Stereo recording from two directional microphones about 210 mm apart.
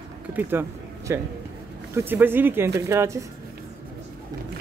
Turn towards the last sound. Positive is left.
turn(degrees=-15)  # may be behind; listen again after turning